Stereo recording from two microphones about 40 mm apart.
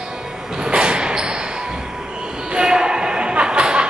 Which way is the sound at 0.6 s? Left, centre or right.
Right.